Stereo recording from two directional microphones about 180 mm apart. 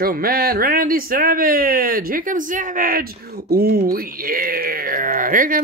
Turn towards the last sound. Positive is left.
turn(degrees=-50)  # may be behind; listen again after turning